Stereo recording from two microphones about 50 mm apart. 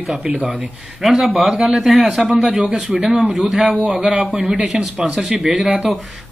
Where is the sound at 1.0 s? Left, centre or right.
Centre; by 3.2 s right.